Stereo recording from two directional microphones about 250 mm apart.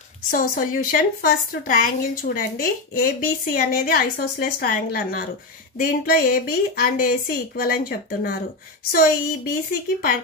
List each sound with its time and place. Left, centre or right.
0.3 s a woman's voice: left